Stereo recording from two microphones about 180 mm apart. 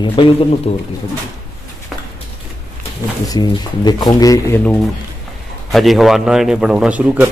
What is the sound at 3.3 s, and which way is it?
Speech, 25° left (ahead or behind).